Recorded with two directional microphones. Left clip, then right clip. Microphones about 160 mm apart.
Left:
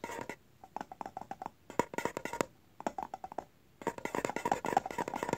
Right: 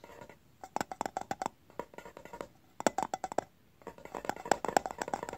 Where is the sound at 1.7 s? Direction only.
80° left.